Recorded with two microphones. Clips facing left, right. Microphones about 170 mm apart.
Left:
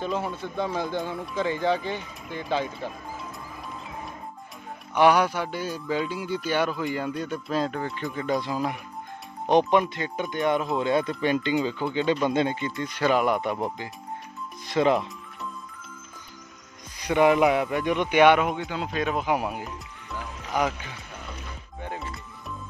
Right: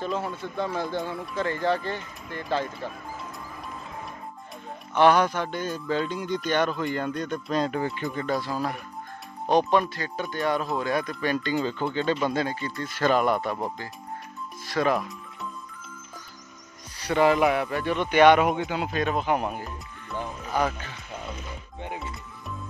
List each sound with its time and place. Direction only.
0.0 s speech: 5° left (ahead or behind)
0.6 s speech: 15° left (ahead or behind)
1.1 s speech: centre (ahead or behind)
1.8 s speech: 15° left (ahead or behind)
4.9 s speech: 10° left (ahead or behind)
8.3 s speech: 20° left (ahead or behind)
14.7 s speech: 20° left (ahead or behind)
17.0 s speech: 15° left (ahead or behind)
18.6 s speech: 15° right (ahead or behind)
18.9 s speech: centre (ahead or behind)
21.8 s music: 20° right (ahead or behind)